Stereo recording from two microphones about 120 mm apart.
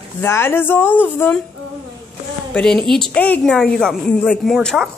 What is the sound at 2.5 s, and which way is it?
Speech, 5° left (ahead or behind).